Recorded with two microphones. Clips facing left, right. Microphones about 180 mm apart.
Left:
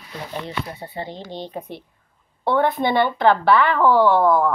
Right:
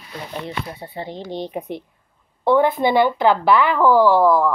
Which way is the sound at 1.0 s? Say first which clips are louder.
Right 5 dB; 20° right (ahead or behind).